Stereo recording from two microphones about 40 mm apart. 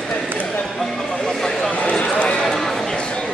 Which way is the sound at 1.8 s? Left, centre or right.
Left.